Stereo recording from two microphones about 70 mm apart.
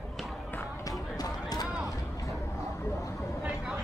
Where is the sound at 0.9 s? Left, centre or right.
Left.